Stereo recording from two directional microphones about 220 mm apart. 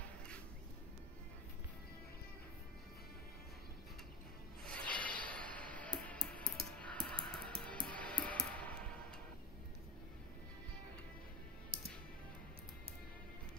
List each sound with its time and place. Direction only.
4.6 s music: 5° left (ahead or behind)